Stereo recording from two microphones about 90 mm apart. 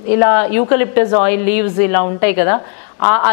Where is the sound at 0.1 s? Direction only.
15° left (ahead or behind).